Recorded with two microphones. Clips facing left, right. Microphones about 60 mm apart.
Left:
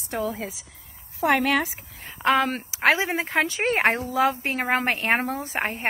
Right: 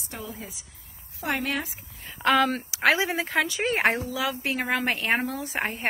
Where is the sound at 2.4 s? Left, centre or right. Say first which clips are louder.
Left 1 dB; left.